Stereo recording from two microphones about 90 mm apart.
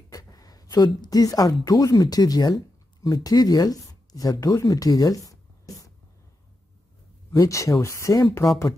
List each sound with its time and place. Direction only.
0.1 s speech: 40° left (ahead or behind)
7.3 s speech: 35° left (ahead or behind)